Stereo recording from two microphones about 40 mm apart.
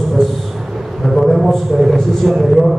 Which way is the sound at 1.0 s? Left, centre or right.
Centre.